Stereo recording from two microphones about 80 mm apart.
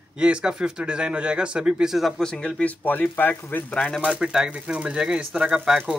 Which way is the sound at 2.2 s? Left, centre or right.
Centre.